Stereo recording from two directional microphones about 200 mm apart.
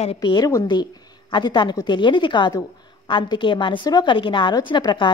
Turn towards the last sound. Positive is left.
turn(degrees=25)  # may be behind; listen again after turning